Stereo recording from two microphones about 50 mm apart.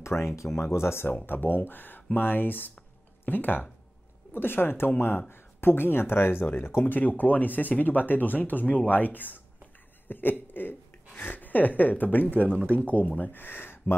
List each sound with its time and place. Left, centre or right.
0.0 s speech: left
1.2 s speech: left
6.9 s speech: left